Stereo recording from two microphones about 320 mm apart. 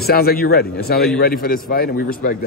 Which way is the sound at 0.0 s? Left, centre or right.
Left.